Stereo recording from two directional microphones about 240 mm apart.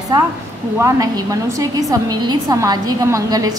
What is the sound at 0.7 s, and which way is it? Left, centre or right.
A woman's voice, centre.